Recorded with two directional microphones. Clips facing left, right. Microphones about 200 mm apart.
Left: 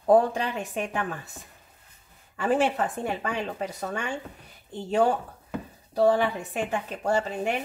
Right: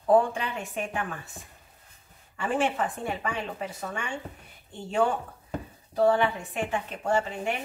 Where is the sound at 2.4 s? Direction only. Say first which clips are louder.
Left 3 dB; 40° left (ahead or behind).